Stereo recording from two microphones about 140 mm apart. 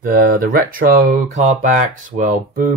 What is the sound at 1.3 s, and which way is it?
Speech, 65° right (ahead or behind).